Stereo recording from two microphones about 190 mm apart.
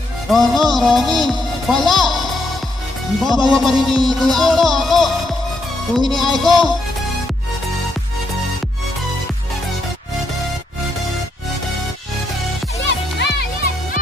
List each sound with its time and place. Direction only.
0.3 s speech: centre (ahead or behind)
3.3 s music: centre (ahead or behind)
12.8 s music: 65° left (ahead or behind)